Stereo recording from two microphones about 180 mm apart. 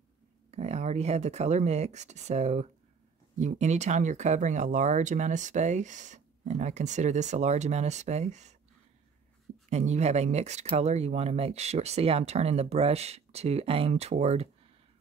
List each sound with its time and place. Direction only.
0.5 s speech: 40° right (ahead or behind)
9.7 s speech: 40° right (ahead or behind)